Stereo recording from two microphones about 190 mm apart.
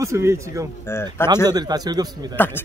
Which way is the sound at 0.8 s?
10° left (ahead or behind).